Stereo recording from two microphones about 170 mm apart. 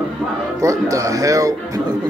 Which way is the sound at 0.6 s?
20° right (ahead or behind).